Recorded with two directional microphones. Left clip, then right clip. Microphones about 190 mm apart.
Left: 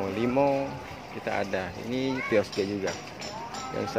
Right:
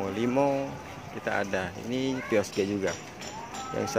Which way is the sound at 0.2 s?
10° right (ahead or behind).